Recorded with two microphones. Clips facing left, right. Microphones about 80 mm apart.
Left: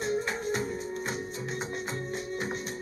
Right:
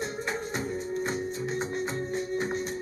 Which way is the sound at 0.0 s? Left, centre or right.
Centre.